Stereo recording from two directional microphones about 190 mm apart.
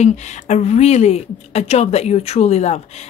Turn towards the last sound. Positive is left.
turn(degrees=35)  # may be behind; listen again after turning